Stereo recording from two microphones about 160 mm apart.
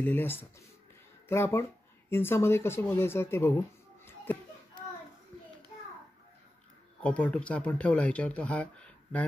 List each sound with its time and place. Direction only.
0.0 s speech: 10° left (ahead or behind)
7.0 s speech: 10° left (ahead or behind)